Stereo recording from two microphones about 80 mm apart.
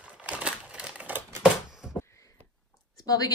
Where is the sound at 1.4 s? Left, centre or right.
Centre.